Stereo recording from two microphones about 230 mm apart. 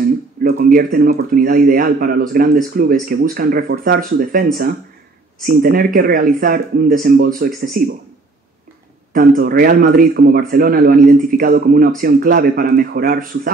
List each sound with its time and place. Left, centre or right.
0.0 s speech: right
9.1 s speech: right